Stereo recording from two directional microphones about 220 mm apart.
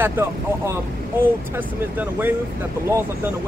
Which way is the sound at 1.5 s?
10° right (ahead or behind).